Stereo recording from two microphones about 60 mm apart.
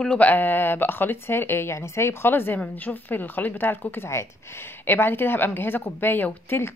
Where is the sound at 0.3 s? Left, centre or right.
Left.